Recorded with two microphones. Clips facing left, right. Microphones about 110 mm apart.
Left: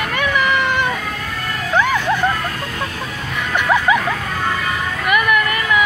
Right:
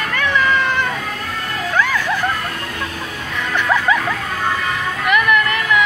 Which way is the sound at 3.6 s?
10° left (ahead or behind).